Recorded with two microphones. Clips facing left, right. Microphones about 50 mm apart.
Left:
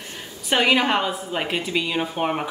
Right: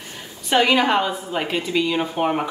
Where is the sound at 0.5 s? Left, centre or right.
Centre.